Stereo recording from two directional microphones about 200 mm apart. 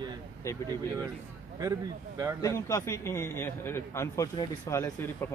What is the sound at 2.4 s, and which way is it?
Speech, 15° left (ahead or behind).